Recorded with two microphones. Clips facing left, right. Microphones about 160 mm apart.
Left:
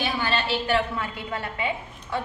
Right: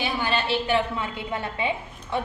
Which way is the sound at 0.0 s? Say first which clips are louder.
Even; 15° right (ahead or behind).